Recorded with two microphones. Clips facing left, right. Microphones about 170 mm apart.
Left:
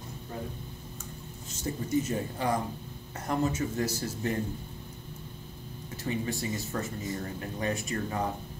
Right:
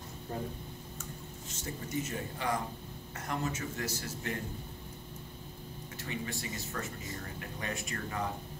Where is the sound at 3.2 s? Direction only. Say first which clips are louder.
Left 7 dB; 35° left (ahead or behind).